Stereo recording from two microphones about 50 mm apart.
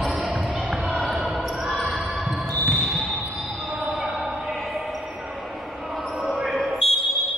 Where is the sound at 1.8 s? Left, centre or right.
Centre.